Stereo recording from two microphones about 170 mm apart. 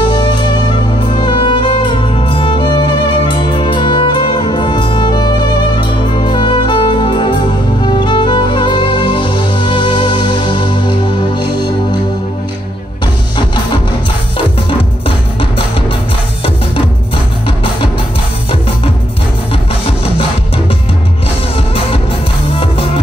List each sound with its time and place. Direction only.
0.1 s music: 25° left (ahead or behind)